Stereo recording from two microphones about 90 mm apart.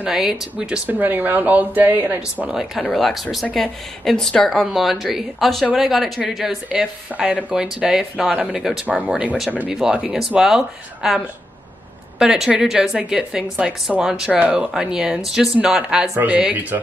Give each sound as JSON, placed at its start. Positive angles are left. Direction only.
{"t": 0.0, "sound": "speech", "side_deg": -5}
{"t": 2.5, "sound": "speech", "side_deg": -5}
{"t": 8.8, "sound": "speech", "side_deg": -15}